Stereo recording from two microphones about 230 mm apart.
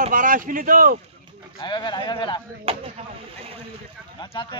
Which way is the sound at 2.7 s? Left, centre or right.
Right.